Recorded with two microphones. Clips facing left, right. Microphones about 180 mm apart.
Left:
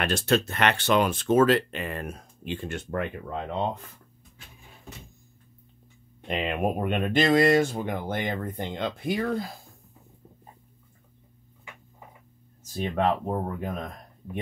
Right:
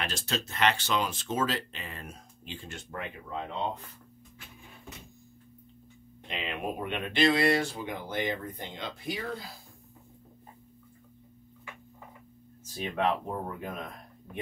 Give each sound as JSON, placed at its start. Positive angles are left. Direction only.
{"t": 0.0, "sound": "speech", "side_deg": 60}
{"t": 6.2, "sound": "speech", "side_deg": 50}
{"t": 12.7, "sound": "speech", "side_deg": 40}